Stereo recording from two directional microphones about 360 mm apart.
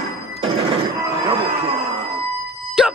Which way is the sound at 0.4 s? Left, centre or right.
Centre.